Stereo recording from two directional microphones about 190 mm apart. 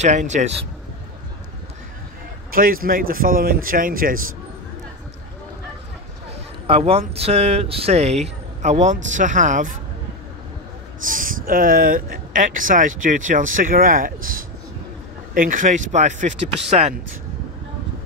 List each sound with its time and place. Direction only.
0.0 s speech: 40° right (ahead or behind)
2.5 s speech: 50° right (ahead or behind)
6.7 s speech: 35° right (ahead or behind)
11.0 s speech: 45° right (ahead or behind)